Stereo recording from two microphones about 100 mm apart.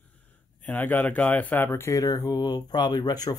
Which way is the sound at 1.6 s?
30° left (ahead or behind).